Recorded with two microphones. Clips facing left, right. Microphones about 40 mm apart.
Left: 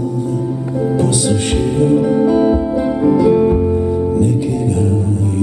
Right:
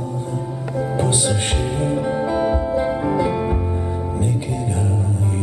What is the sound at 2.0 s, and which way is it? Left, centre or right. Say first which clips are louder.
Music: left 7 dB; centre.